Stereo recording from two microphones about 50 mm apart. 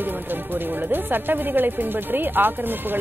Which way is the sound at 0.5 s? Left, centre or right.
Right.